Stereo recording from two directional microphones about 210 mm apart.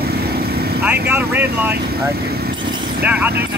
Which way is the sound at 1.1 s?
10° right (ahead or behind).